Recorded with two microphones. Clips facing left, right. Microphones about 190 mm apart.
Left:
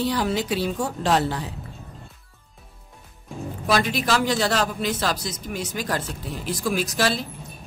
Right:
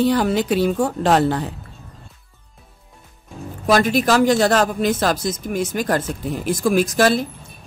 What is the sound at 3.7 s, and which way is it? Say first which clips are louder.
Speech: right 6 dB; 45° right (ahead or behind).